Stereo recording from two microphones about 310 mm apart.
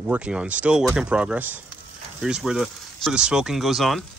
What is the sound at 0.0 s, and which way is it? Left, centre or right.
Speech, centre.